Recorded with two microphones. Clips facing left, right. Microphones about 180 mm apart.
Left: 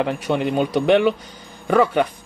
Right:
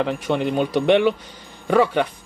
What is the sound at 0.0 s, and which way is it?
Speech, centre (ahead or behind).